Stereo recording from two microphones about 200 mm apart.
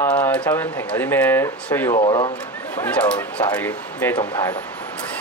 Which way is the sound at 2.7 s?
5° left (ahead or behind).